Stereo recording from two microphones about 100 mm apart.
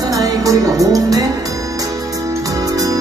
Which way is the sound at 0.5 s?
35° right (ahead or behind).